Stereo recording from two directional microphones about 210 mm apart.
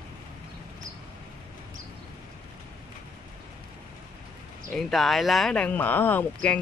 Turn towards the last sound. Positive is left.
turn(degrees=5)  # may be behind; listen again after turning